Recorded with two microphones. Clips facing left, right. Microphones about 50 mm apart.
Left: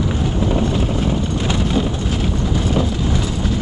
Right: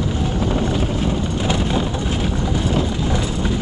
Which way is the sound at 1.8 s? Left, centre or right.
Centre.